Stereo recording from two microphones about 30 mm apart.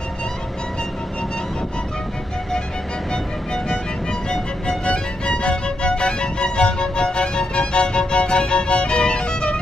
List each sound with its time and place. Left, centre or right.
3.1 s music: left